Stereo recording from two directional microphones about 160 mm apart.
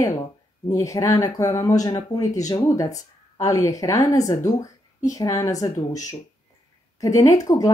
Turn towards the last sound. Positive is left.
turn(degrees=20)  # may be behind; listen again after turning